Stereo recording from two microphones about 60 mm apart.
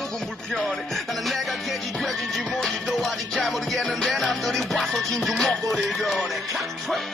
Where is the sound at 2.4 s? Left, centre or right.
Centre.